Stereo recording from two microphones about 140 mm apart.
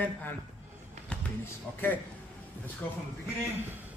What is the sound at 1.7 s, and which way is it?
A man's voice, 10° left (ahead or behind).